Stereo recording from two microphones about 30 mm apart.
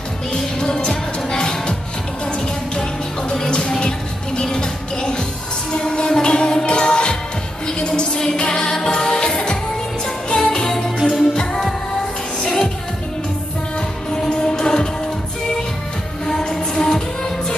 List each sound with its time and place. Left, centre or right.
0.3 s music: left
14.3 s music: left
16.8 s music: centre